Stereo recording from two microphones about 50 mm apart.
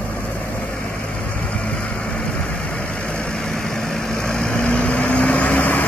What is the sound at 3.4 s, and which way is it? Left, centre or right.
Vehicle, centre.